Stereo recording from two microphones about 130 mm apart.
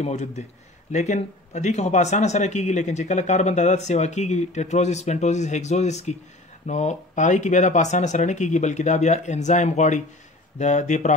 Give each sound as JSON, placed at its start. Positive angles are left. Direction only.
{"t": 0.0, "sound": "speech", "side_deg": 55}